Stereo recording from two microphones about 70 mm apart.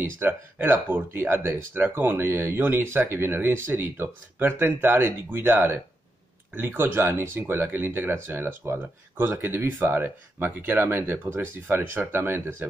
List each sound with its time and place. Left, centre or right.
0.0 s speech: right